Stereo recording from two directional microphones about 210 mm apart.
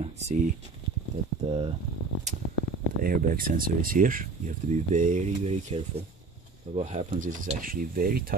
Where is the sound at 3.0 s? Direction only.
40° right (ahead or behind).